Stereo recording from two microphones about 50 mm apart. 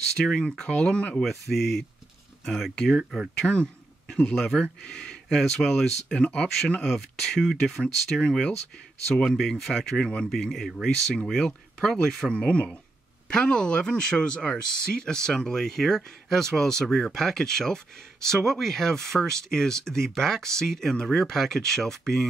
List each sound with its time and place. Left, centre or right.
0.2 s speech: centre
1.5 s speech: centre
3.0 s speech: centre
3.3 s speech: left; by 12.3 s centre
12.3 s speech: left